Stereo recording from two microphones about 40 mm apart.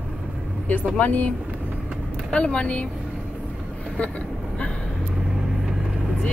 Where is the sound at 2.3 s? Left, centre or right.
Left.